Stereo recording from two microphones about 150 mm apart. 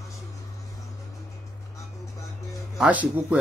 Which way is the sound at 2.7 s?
10° right (ahead or behind).